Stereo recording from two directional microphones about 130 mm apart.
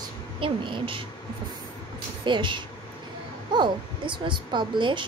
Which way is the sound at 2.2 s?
40° right (ahead or behind).